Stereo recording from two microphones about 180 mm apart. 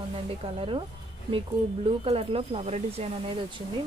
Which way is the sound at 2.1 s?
35° right (ahead or behind).